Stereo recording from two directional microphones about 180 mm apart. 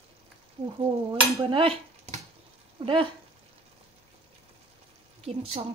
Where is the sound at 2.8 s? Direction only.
30° right (ahead or behind).